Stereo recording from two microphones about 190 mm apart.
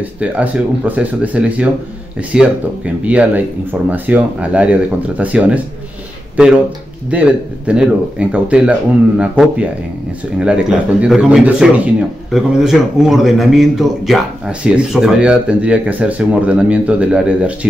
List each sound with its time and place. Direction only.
0.0 s a man's voice: 5° right (ahead or behind)